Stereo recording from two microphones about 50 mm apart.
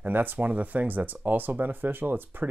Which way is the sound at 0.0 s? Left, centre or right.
Right.